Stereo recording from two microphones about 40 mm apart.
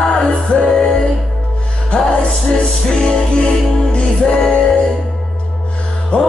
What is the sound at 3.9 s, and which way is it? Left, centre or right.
Music, left.